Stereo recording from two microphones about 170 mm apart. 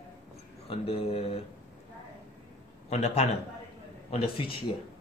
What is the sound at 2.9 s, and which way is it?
Speech, 35° left (ahead or behind).